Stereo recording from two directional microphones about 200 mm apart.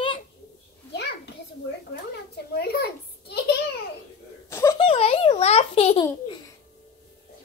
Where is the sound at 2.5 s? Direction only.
55° left (ahead or behind).